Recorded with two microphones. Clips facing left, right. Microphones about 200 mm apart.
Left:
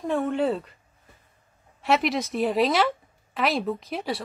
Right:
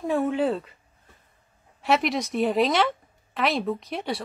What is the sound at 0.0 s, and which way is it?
Speech, 5° right (ahead or behind).